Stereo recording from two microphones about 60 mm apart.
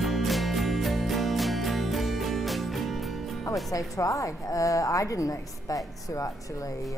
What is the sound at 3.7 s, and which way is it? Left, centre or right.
A woman's voice, left.